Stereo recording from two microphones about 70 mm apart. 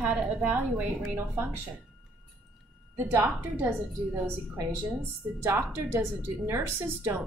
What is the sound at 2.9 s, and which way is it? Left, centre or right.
A woman's voice, right.